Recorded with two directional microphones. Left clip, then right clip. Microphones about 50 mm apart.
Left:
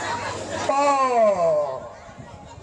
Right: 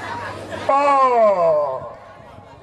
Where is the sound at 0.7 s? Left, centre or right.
Right.